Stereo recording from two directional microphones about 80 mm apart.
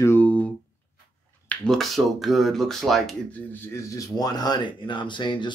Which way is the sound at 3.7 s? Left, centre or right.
Left.